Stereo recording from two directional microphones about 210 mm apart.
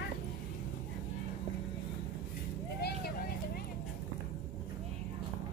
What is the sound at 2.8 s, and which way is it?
Vehicle, 45° left (ahead or behind).